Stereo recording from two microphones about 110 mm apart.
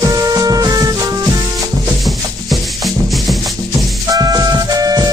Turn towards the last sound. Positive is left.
turn(degrees=-35)  # may be behind; listen again after turning